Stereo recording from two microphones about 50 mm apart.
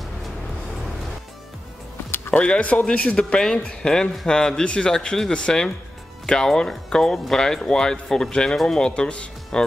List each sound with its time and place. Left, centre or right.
2.4 s speech: left